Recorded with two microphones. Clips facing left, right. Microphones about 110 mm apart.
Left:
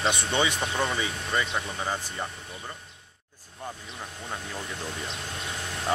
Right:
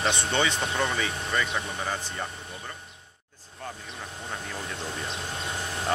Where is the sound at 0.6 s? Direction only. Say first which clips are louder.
Even; centre (ahead or behind).